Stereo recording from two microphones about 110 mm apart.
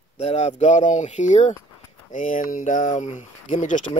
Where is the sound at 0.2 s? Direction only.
75° left (ahead or behind).